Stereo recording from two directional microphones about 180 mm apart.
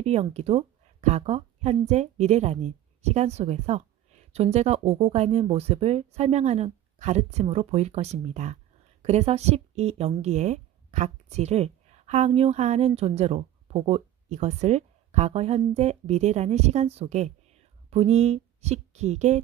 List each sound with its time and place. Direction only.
0.0 s a woman's voice: 35° right (ahead or behind)